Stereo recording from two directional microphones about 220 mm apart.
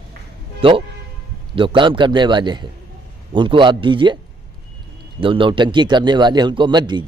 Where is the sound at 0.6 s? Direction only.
25° right (ahead or behind).